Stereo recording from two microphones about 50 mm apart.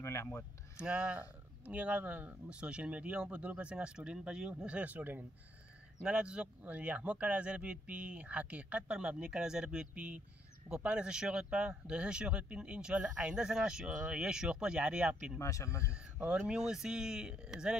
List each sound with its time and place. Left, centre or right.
0.0 s a sound: left
0.7 s speech: right
6.0 s speech: centre
15.3 s speech: left
16.4 s speech: centre